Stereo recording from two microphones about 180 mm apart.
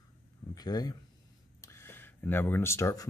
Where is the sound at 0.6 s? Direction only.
20° left (ahead or behind).